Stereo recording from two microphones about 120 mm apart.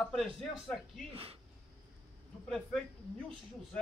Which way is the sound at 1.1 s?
55° right (ahead or behind).